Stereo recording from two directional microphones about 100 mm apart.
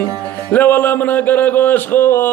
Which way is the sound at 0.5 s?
15° left (ahead or behind).